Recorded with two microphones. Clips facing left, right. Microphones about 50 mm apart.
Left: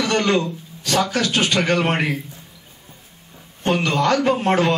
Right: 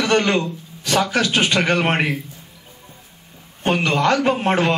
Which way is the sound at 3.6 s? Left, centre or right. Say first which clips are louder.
Right 1 dB; right.